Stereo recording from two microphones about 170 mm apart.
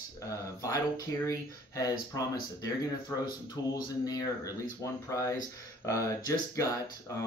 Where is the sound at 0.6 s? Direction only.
20° left (ahead or behind).